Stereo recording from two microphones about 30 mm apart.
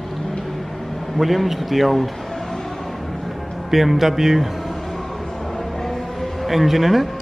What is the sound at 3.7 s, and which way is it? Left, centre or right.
Speech, centre.